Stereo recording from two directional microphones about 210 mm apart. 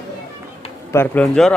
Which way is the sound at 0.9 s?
10° left (ahead or behind).